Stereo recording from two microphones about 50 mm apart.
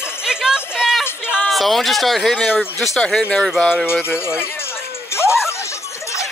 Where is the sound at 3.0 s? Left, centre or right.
Left.